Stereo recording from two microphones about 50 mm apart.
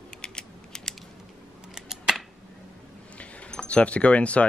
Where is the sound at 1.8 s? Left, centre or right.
Centre.